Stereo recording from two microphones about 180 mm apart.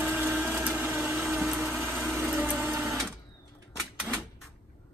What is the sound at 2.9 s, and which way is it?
Sewing machine, centre (ahead or behind).